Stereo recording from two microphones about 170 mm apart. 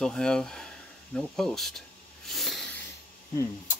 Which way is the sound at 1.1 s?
5° left (ahead or behind).